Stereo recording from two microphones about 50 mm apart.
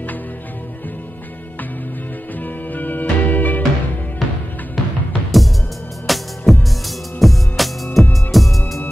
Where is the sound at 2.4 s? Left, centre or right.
Left.